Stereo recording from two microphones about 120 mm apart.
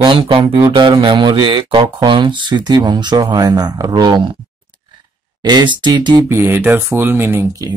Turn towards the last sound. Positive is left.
turn(degrees=-25)  # may be behind; listen again after turning